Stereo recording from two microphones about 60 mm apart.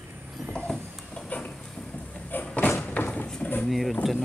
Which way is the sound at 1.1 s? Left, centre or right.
Centre.